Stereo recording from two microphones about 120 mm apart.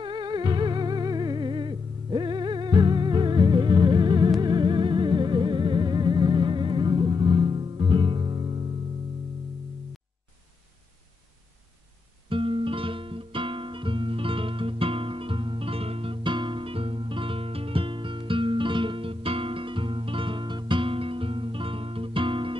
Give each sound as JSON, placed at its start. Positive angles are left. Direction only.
{"t": 0.0, "sound": "music", "side_deg": -40}
{"t": 12.3, "sound": "music", "side_deg": -45}